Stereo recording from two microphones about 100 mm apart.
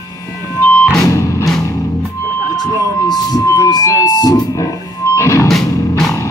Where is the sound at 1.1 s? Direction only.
35° left (ahead or behind).